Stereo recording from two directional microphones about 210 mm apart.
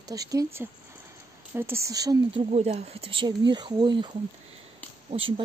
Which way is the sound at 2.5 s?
30° right (ahead or behind).